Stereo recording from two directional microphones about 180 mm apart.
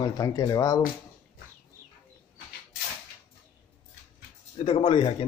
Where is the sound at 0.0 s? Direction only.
20° left (ahead or behind).